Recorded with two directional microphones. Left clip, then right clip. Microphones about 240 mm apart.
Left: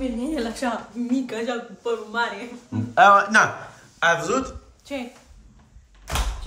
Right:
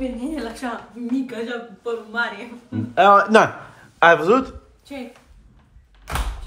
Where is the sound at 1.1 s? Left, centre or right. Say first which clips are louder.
Even; left.